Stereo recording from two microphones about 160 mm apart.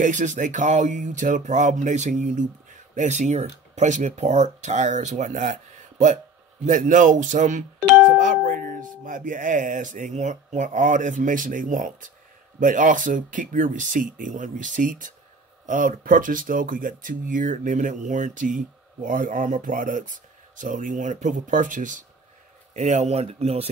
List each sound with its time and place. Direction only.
0.0 s speech: 50° right (ahead or behind)